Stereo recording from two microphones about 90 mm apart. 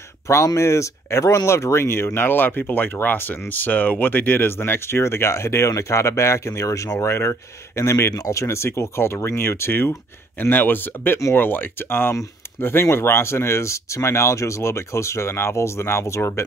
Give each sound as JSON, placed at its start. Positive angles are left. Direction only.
{"t": 0.6, "sound": "speech", "side_deg": 30}